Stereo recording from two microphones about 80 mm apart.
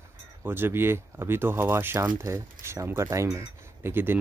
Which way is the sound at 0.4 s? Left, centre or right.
Right.